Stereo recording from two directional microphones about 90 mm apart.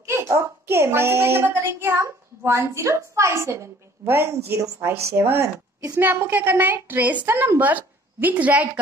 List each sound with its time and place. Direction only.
0.0 s a woman's voice: 30° right (ahead or behind); by 8.6 s 15° right (ahead or behind)